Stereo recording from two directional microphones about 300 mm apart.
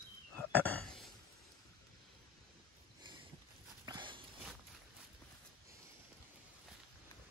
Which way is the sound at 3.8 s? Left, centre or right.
Centre.